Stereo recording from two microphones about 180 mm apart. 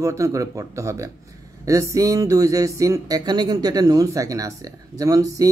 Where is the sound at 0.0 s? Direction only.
15° right (ahead or behind).